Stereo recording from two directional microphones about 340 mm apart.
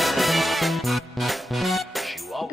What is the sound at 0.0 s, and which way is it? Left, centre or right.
Music, centre.